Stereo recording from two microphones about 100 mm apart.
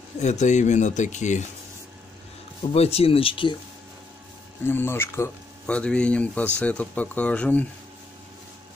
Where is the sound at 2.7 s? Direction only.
90° left; by 3.5 s 60° left (ahead or behind).